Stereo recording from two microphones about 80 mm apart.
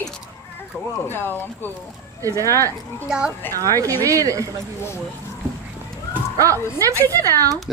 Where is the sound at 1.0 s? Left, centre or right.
Left.